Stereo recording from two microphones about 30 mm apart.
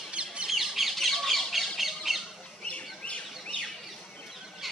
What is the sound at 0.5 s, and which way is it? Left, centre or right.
Bird, centre.